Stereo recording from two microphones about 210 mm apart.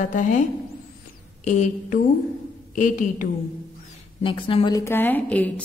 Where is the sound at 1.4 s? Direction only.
35° left (ahead or behind).